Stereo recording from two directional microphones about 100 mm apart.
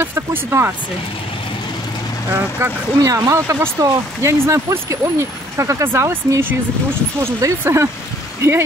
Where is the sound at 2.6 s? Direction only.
25° right (ahead or behind).